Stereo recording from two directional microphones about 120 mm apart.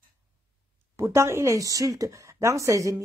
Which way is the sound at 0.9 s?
25° right (ahead or behind).